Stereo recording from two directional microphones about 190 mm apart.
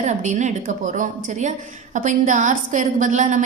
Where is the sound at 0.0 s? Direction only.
40° right (ahead or behind).